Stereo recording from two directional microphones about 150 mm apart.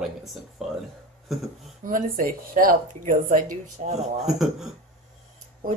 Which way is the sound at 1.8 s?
65° right (ahead or behind).